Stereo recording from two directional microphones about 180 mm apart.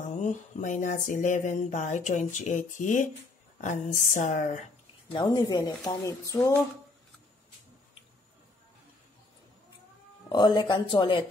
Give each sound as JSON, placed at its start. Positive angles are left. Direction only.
{"t": 0.2, "sound": "speech", "side_deg": 45}
{"t": 5.2, "sound": "speech", "side_deg": 20}
{"t": 10.3, "sound": "speech", "side_deg": 25}